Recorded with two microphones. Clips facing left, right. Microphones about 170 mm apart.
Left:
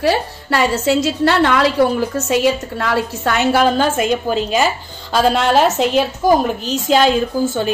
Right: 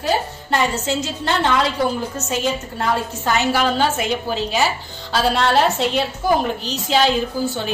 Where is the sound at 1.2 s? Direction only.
70° left (ahead or behind); by 4.4 s 50° left (ahead or behind).